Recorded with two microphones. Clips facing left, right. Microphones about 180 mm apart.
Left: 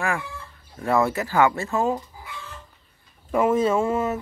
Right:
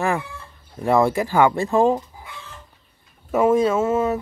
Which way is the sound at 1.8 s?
30° right (ahead or behind).